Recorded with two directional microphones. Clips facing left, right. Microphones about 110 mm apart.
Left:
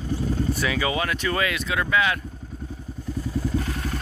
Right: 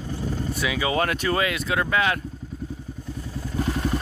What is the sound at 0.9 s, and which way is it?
Speech, 40° right (ahead or behind).